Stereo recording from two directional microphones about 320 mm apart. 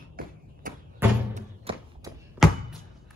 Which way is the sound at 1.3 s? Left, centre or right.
Centre.